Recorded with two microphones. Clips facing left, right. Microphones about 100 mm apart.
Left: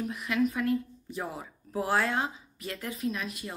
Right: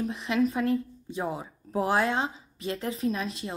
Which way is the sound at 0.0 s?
30° right (ahead or behind).